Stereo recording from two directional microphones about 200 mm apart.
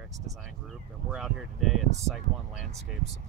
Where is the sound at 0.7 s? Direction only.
Centre (ahead or behind).